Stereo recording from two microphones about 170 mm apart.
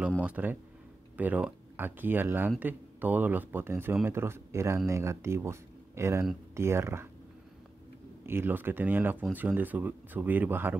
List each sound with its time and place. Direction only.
0.2 s speech: 10° right (ahead or behind)
8.3 s speech: 10° right (ahead or behind)